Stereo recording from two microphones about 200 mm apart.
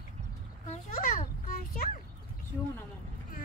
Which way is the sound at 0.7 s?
45° left (ahead or behind).